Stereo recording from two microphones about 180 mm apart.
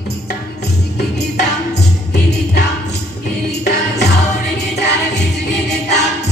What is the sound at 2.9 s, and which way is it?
Music, 65° left (ahead or behind).